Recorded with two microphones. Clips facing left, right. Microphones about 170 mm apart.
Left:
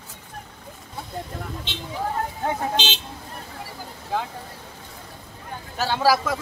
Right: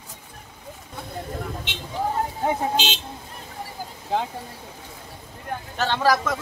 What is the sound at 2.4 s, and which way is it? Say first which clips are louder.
Speech: right 2 dB; 5° right (ahead or behind).